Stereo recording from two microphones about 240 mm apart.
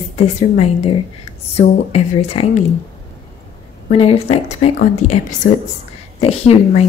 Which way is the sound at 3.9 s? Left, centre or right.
Left.